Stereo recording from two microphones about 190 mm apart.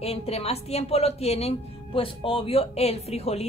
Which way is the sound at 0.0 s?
30° left (ahead or behind).